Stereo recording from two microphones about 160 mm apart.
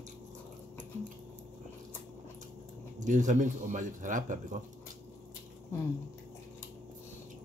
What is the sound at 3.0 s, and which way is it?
Speech, 50° right (ahead or behind).